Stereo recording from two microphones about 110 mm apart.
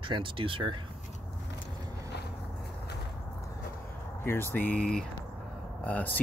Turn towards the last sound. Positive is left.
turn(degrees=15)  # may be behind; listen again after turning